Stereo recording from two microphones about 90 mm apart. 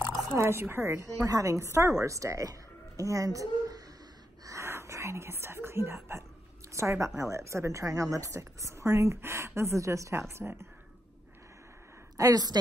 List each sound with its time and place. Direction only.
0.4 s a woman's voice: 25° right (ahead or behind); by 3.8 s 40° right (ahead or behind)
4.5 s whispering: 30° right (ahead or behind)
6.7 s a woman's voice: 35° right (ahead or behind)
12.2 s a woman's voice: 45° right (ahead or behind)